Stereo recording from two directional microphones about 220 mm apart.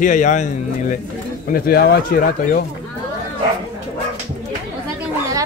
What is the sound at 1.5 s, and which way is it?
Speech, 45° left (ahead or behind).